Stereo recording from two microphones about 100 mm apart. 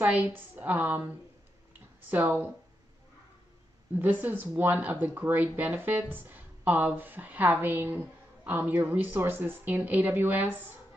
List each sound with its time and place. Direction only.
0.0 s speech: 15° right (ahead or behind)
2.0 s speech: 20° right (ahead or behind)
3.9 s speech: 20° right (ahead or behind)